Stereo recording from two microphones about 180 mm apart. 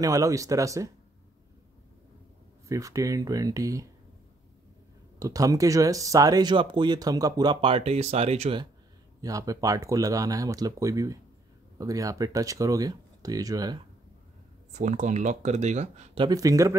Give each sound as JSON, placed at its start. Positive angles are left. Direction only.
{"t": 0.0, "sound": "speech", "side_deg": -20}
{"t": 2.7, "sound": "speech", "side_deg": -20}
{"t": 5.2, "sound": "speech", "side_deg": -20}
{"t": 9.2, "sound": "speech", "side_deg": -20}
{"t": 14.7, "sound": "speech", "side_deg": -40}
{"t": 16.2, "sound": "speech", "side_deg": -20}